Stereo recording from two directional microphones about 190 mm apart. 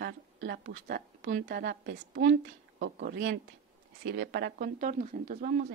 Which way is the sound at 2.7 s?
50° right (ahead or behind).